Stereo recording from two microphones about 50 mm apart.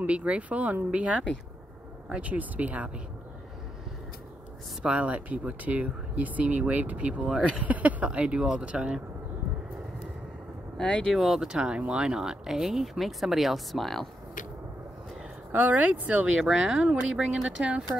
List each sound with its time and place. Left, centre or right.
0.0 s speech: right
4.8 s speech: right
7.2 s speech: centre
7.5 s speech: right
10.8 s speech: centre
11.1 s speech: centre
11.4 s speech: centre
15.5 s speech: right
16.3 s speech: centre